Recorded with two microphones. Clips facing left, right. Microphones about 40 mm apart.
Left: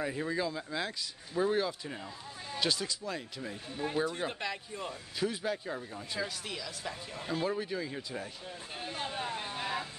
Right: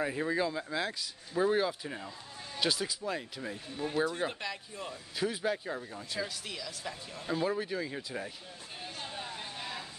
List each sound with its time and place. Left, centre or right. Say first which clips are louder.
0.0 s speech: right 2 dB; centre
3.7 s speech: right 1 dB; centre
5.1 s speech: right 2 dB; centre
8.9 s a sound: left 6 dB; left